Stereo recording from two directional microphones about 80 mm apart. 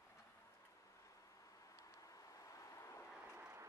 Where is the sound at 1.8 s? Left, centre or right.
Left.